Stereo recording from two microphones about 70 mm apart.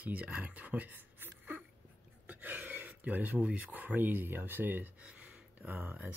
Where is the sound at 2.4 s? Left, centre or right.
Right.